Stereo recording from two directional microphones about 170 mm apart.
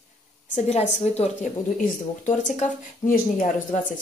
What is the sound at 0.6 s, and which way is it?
Speech, 45° left (ahead or behind).